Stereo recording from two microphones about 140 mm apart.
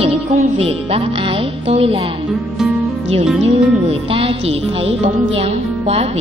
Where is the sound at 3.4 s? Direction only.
45° right (ahead or behind).